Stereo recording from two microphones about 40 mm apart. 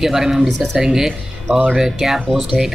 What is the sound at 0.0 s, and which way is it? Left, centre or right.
Speech, centre.